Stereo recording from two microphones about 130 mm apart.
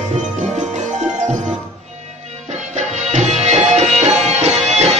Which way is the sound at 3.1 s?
60° right (ahead or behind).